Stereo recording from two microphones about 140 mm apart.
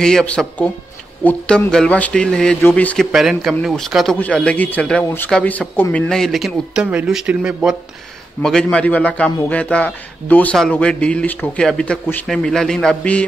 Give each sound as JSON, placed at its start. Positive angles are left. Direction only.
{"t": 0.0, "sound": "a man's voice", "side_deg": 5}
{"t": 3.1, "sound": "a man's voice", "side_deg": -5}
{"t": 8.4, "sound": "a man's voice", "side_deg": 5}